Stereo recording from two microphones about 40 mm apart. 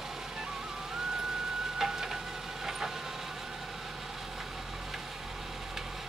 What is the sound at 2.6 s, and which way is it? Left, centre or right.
Vehicle, centre.